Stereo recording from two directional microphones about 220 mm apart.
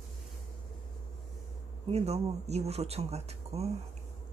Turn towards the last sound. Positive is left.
turn(degrees=-30)  # may be behind; listen again after turning